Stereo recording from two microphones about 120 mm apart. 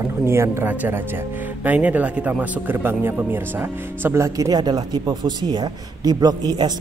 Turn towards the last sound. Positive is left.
turn(degrees=-35)  # may be behind; listen again after turning